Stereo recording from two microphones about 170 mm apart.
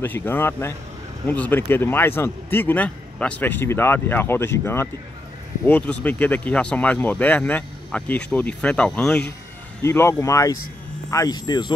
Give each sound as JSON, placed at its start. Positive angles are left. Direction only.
{"t": 0.0, "sound": "speech", "side_deg": 10}
{"t": 5.7, "sound": "speech", "side_deg": 10}